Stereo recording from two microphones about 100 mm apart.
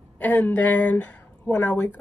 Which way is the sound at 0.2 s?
15° left (ahead or behind).